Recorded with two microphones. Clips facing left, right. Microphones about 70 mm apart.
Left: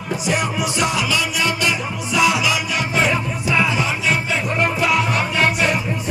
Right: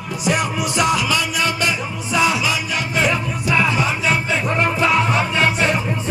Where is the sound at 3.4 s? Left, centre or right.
Right.